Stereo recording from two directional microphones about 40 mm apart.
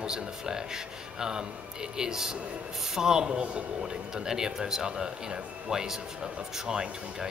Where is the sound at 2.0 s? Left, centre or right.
Centre.